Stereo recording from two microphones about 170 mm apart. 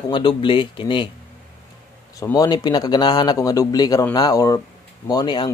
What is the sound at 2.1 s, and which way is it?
Speech, 20° left (ahead or behind).